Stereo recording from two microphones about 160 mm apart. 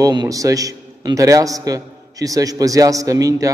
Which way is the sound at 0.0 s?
25° right (ahead or behind).